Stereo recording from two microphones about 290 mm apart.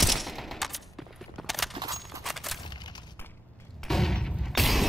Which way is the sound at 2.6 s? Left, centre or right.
Centre.